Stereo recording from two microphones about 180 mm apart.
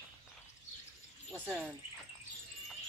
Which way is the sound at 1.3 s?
5° right (ahead or behind).